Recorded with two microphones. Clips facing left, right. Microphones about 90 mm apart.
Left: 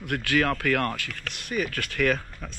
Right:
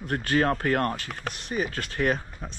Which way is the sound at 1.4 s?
20° right (ahead or behind).